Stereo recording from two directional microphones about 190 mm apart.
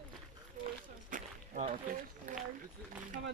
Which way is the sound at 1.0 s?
45° right (ahead or behind).